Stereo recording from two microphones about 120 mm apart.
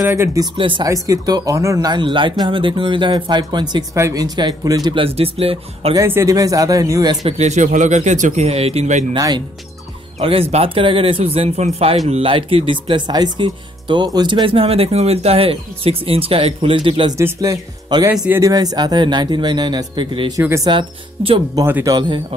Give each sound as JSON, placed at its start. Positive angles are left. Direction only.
{"t": 0.0, "sound": "speech", "side_deg": -25}
{"t": 0.6, "sound": "speech", "side_deg": -45}
{"t": 1.0, "sound": "speech", "side_deg": -30}
{"t": 3.9, "sound": "speech", "side_deg": -25}
{"t": 4.9, "sound": "speech", "side_deg": -50}
{"t": 5.9, "sound": "speech", "side_deg": -25}
{"t": 7.2, "sound": "speech", "side_deg": -70}
{"t": 9.1, "sound": "speech", "side_deg": -35}
{"t": 10.5, "sound": "speech", "side_deg": -50}
{"t": 17.2, "sound": "speech", "side_deg": -30}
{"t": 20.3, "sound": "speech", "side_deg": -25}
{"t": 20.6, "sound": "speech", "side_deg": -45}